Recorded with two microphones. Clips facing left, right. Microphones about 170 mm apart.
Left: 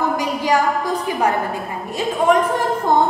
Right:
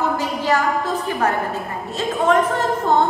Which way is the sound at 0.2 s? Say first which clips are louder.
Left 2 dB; 15° left (ahead or behind).